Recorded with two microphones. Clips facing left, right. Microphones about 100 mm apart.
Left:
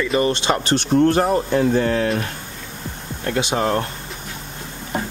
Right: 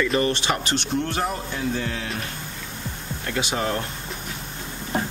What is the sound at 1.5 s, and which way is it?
Speech, 50° left (ahead or behind).